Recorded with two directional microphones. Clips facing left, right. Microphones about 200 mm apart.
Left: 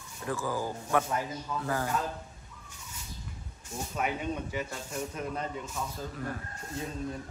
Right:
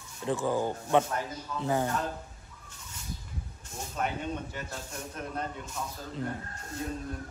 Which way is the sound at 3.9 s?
5° left (ahead or behind).